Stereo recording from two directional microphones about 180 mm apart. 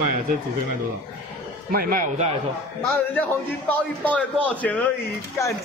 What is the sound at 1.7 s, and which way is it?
Speech, 50° right (ahead or behind).